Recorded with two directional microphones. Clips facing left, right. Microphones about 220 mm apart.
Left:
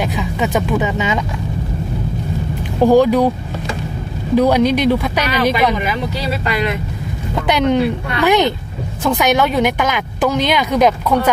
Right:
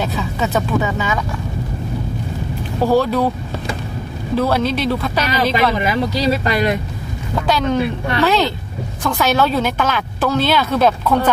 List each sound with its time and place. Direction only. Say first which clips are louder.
0.0 s speech: left 2 dB; 15° left (ahead or behind)
2.8 s a woman's voice: left 5 dB; 15° left (ahead or behind)
4.4 s a woman's voice: left 5 dB; 15° left (ahead or behind)
6.4 s speech: right 2 dB; 40° right (ahead or behind)
7.4 s a woman's voice: left 3 dB; 20° left (ahead or behind)